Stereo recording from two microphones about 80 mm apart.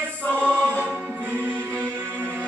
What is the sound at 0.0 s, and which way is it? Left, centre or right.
Music, right.